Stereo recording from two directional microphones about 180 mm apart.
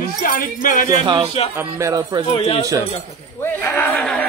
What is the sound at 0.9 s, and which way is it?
A man's voice, 25° right (ahead or behind).